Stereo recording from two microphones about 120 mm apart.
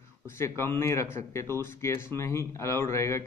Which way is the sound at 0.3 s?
20° left (ahead or behind).